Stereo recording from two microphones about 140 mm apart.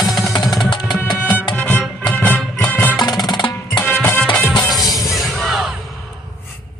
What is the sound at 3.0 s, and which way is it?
Music, 30° left (ahead or behind).